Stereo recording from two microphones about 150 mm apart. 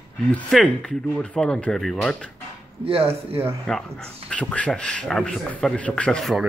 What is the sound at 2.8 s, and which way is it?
Speech, 40° right (ahead or behind).